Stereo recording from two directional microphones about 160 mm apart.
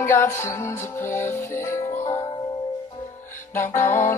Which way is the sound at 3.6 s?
15° left (ahead or behind).